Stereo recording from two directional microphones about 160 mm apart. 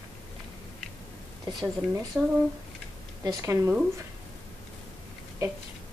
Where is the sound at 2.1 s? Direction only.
10° right (ahead or behind).